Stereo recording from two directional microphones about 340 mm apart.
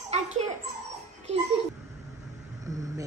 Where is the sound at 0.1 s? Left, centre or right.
Centre.